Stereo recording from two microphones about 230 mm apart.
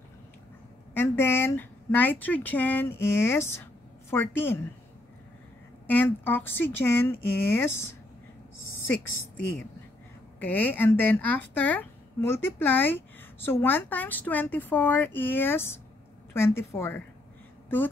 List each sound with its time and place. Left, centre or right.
0.9 s speech: centre
5.9 s speech: centre
10.4 s speech: centre